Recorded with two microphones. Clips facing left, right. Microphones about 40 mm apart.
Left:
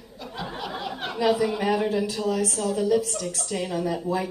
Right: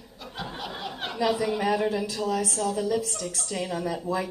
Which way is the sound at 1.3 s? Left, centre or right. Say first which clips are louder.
Left 5 dB; centre.